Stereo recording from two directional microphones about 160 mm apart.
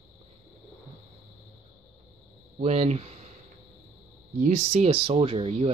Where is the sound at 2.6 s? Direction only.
45° right (ahead or behind).